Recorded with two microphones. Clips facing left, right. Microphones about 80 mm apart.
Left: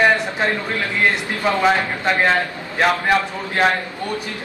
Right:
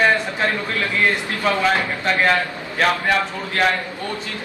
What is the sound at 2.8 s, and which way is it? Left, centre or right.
Speech, centre.